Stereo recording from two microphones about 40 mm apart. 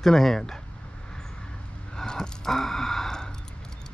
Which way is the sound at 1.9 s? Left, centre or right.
Centre.